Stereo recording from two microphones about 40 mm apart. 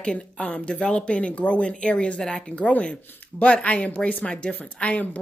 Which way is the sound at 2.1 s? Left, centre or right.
Centre.